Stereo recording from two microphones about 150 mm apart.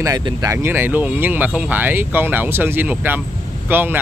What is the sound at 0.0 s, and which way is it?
Speech, 25° right (ahead or behind).